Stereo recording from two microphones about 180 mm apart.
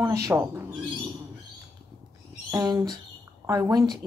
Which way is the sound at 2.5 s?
20° right (ahead or behind).